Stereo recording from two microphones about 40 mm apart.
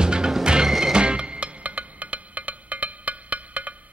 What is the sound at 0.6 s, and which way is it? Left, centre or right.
Music, centre.